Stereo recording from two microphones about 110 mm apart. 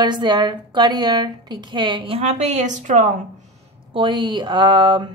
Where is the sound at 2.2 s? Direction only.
90° right.